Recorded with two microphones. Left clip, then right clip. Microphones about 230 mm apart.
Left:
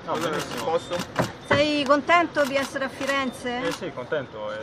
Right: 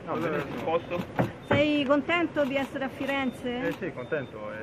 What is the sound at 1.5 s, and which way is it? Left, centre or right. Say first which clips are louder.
Speech: left 4 dB; centre.